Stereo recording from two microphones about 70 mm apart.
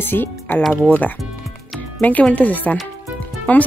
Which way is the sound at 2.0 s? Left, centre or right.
Left.